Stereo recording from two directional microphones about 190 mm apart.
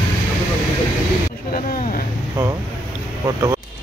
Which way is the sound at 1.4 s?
50° left (ahead or behind).